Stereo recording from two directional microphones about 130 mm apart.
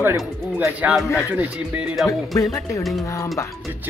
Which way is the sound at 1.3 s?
10° right (ahead or behind).